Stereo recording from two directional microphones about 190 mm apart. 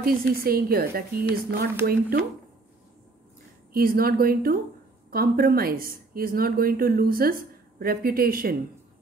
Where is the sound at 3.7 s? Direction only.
50° right (ahead or behind).